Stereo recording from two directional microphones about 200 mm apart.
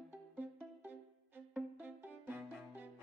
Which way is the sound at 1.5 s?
10° right (ahead or behind).